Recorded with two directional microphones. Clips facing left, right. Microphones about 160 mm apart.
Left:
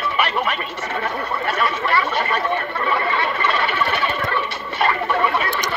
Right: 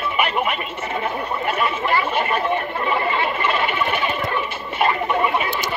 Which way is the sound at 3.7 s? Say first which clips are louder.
Even; 10° right (ahead or behind).